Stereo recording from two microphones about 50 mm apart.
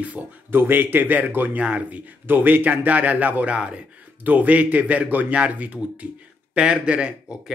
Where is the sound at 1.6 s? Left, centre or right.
Right.